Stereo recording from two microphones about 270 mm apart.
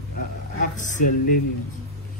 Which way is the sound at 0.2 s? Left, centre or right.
Left.